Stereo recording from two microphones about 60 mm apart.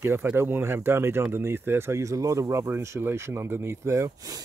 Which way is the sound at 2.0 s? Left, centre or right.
Right.